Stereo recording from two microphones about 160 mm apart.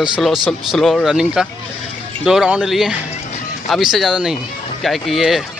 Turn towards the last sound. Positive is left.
turn(degrees=0)  # may be behind; listen again after turning